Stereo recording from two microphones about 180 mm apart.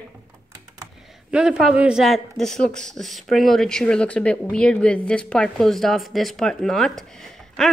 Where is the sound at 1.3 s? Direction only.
5° right (ahead or behind).